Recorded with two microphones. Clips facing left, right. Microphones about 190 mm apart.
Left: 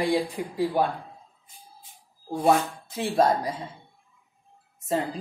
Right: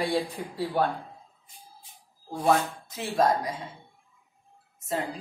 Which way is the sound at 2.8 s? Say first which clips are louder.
Left 3 dB; 30° left (ahead or behind).